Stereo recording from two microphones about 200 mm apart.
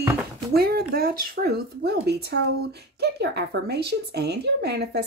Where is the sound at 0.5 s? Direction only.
50° right (ahead or behind).